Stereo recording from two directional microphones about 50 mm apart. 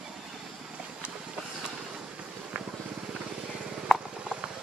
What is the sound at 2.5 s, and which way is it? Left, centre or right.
Vehicle, right.